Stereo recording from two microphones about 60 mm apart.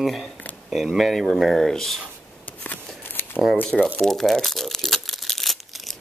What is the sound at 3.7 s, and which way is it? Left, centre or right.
Speech, left.